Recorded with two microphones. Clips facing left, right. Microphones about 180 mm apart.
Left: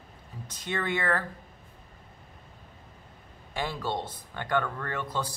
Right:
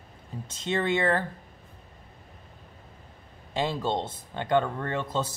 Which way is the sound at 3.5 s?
25° right (ahead or behind).